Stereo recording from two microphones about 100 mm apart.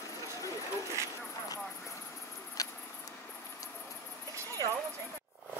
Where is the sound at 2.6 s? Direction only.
35° left (ahead or behind).